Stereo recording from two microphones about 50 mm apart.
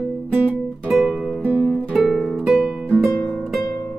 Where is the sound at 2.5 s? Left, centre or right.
Centre.